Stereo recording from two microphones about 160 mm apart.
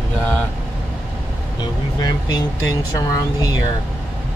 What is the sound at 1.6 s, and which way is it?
Speech, 25° left (ahead or behind).